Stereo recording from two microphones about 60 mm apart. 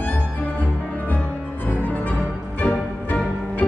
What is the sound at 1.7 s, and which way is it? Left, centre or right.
Music, left.